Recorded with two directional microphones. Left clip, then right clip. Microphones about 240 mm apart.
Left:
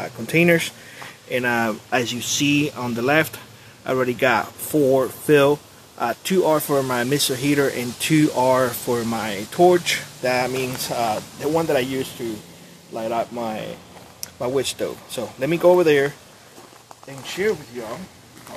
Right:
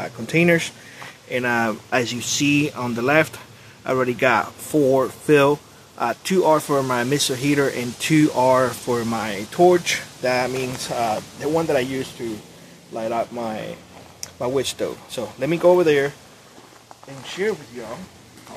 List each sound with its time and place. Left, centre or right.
0.0 s speech: centre
17.2 s speech: left